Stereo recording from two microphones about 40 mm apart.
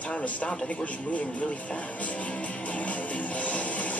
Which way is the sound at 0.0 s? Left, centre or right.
Left.